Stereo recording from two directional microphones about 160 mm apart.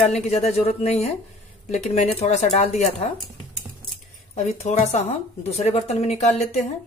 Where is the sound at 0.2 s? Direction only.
40° left (ahead or behind).